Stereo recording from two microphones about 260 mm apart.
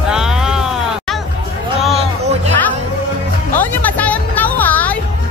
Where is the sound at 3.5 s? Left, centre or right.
Centre.